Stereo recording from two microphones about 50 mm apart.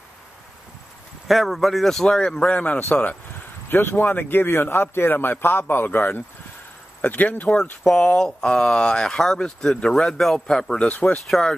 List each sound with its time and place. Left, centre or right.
1.2 s speech: centre
2.0 s a man's voice: centre; by 3.2 s left
3.6 s speech: left
8.0 s speech: centre
10.8 s speech: left
11.2 s speech: centre